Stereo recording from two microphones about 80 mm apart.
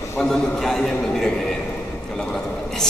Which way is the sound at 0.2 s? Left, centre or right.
Centre.